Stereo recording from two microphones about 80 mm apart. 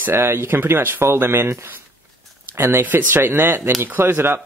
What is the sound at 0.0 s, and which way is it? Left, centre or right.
Speech, right.